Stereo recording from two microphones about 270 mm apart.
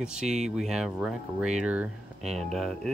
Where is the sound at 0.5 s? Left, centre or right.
Centre.